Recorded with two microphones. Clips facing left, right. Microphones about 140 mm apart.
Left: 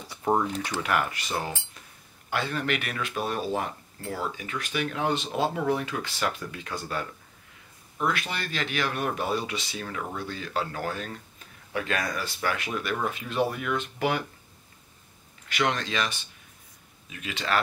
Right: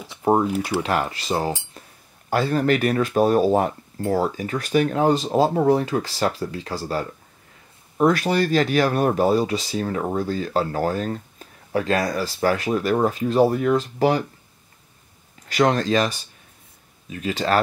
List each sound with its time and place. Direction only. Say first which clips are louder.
0.2 s typing: right 6 dB; 30° right (ahead or behind)
0.5 s speech: right 8 dB; 10° right (ahead or behind)
0.7 s speech: right 1 dB; 30° right (ahead or behind)
15.4 s speech: right 8 dB; 40° right (ahead or behind)